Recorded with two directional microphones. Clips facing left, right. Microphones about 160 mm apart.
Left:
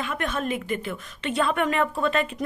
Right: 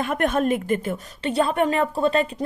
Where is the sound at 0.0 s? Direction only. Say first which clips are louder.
Right 7 dB; 50° right (ahead or behind).